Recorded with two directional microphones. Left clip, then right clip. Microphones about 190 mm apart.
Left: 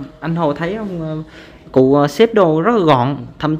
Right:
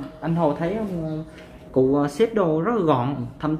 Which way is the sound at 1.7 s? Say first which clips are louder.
Left 8 dB; 50° left (ahead or behind).